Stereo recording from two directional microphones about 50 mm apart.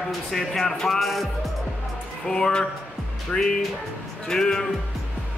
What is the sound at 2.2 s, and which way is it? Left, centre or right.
Speech, centre.